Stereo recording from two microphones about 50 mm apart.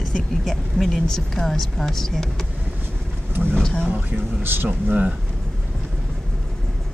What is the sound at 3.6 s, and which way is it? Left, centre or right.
Speech, centre.